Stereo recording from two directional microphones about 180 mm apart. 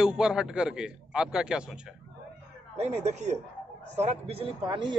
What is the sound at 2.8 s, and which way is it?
A man's voice, 40° right (ahead or behind).